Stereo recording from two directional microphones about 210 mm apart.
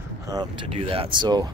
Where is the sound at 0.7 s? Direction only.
25° right (ahead or behind).